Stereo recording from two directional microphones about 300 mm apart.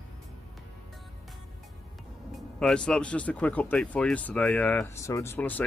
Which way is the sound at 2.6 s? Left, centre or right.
Centre.